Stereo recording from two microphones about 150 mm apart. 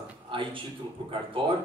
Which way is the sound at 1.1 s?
35° right (ahead or behind).